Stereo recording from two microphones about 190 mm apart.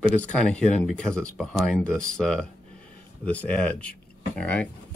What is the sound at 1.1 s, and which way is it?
Speech, 5° left (ahead or behind).